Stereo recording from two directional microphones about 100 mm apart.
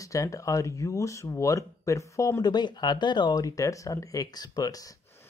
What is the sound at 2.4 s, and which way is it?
Speech, 45° left (ahead or behind).